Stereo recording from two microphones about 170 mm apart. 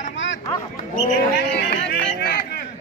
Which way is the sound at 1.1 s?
70° left (ahead or behind).